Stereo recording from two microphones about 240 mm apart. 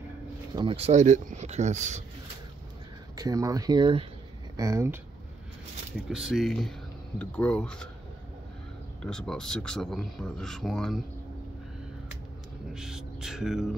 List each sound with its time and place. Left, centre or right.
0.6 s speech: right
3.2 s speech: centre
6.0 s speech: centre
9.0 s speech: centre
12.7 s a sound: centre